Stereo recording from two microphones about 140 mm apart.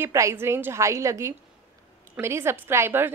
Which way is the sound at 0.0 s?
20° right (ahead or behind).